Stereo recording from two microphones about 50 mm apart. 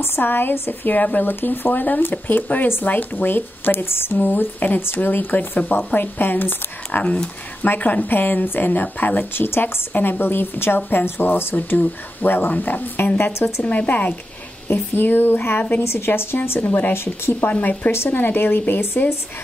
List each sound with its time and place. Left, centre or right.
0.0 s speech: left
1.3 s speech: left
9.2 s a woman's voice: left
13.7 s speech: left
14.7 s a woman's voice: left
16.6 s speech: left
16.9 s a woman's voice: left
17.5 s speech: left